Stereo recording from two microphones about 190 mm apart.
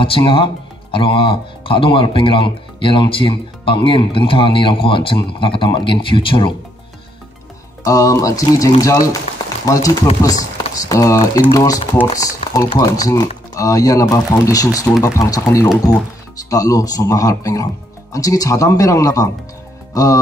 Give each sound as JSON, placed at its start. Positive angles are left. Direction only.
{"t": 0.0, "sound": "speech", "side_deg": 25}
{"t": 7.8, "sound": "speech", "side_deg": 15}
{"t": 19.9, "sound": "music", "side_deg": 15}